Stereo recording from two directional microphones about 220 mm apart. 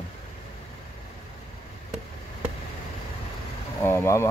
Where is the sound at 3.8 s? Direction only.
10° left (ahead or behind).